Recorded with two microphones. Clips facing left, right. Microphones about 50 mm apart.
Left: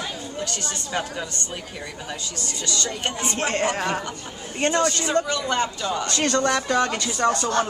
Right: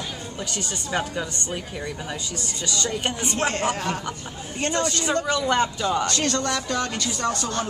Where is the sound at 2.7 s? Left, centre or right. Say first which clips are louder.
Right 1 dB; centre.